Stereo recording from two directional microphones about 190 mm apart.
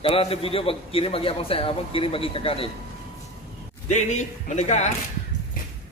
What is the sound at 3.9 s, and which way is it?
Speech, 40° left (ahead or behind).